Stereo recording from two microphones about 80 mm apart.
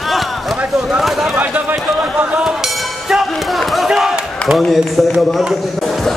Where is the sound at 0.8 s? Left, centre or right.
Centre.